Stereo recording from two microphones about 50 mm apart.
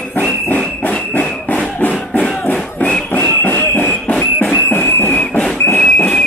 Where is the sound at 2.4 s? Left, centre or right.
Left.